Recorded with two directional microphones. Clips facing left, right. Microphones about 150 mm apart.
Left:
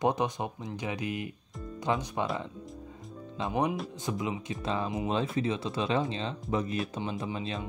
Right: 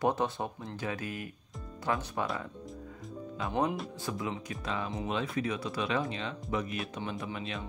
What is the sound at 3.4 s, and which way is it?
Speech, 20° left (ahead or behind).